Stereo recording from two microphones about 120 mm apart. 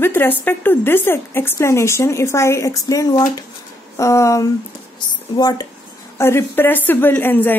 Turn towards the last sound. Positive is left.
turn(degrees=15)  # may be behind; listen again after turning